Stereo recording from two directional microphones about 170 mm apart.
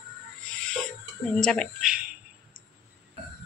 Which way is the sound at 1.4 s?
Centre (ahead or behind).